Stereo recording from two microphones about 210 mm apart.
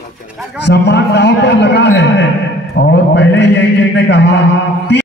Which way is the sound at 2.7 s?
55° left (ahead or behind).